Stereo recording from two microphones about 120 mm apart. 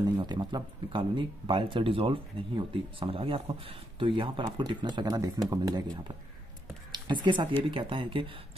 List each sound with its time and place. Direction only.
0.0 s speech: 40° right (ahead or behind)
6.9 s a sound: 40° right (ahead or behind)
7.7 s speech: 45° right (ahead or behind)